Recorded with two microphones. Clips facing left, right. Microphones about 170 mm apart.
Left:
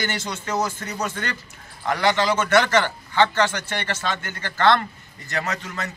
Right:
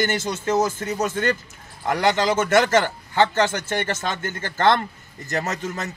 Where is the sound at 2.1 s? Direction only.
45° right (ahead or behind).